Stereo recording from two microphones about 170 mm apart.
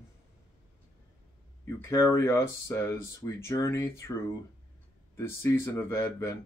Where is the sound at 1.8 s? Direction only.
15° left (ahead or behind).